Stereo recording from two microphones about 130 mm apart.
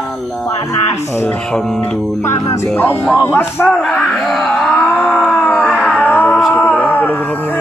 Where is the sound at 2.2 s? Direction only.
20° left (ahead or behind).